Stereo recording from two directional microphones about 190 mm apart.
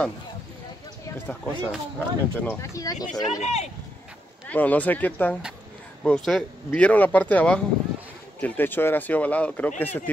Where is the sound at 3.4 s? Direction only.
35° left (ahead or behind).